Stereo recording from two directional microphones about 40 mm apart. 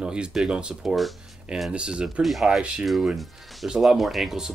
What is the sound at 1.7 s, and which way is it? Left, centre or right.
Speech, right.